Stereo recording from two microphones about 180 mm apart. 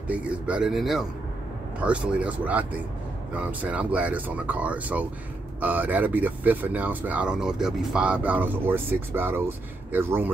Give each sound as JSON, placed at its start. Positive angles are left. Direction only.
{"t": 0.1, "sound": "speech", "side_deg": -5}